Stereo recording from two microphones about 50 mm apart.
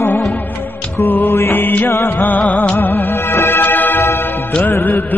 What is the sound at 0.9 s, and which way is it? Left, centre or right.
Music, left.